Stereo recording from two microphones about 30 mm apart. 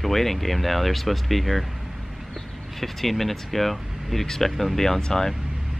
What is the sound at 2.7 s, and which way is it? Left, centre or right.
Speech, centre.